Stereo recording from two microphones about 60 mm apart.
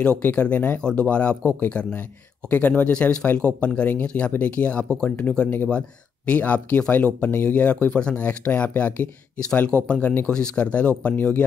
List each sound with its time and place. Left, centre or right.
0.0 s speech: left
5.7 s speech: centre